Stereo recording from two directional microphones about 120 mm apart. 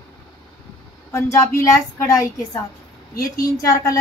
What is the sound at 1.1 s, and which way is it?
A woman's voice, 25° left (ahead or behind).